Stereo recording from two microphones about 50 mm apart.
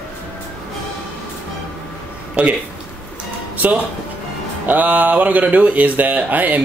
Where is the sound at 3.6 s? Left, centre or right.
Right.